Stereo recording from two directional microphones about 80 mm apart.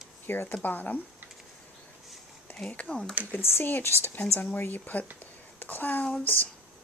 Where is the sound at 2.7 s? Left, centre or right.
Centre.